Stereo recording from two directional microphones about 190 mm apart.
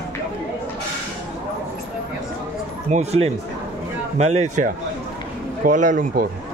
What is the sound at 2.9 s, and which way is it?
Speech, 35° right (ahead or behind).